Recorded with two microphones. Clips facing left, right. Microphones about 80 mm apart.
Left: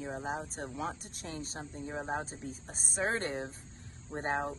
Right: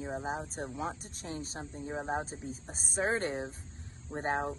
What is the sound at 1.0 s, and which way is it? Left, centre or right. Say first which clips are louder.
Speech: right 2 dB; right.